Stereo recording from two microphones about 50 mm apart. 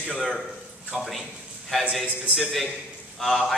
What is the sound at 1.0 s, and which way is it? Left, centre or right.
A man's voice, centre.